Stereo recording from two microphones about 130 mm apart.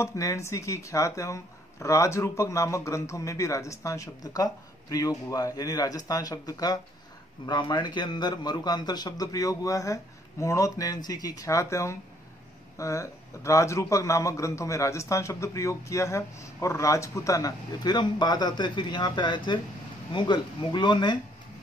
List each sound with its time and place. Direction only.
0.0 s a man's voice: 25° left (ahead or behind)